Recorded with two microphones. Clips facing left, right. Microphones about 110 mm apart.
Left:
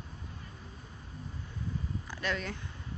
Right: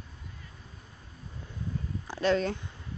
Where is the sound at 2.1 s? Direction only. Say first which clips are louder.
Right 11 dB; 30° right (ahead or behind).